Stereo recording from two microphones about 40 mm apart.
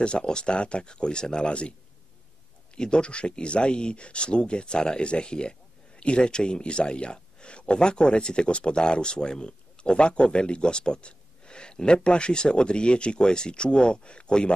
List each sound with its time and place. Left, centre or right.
0.0 s speech: left
2.7 s speech: left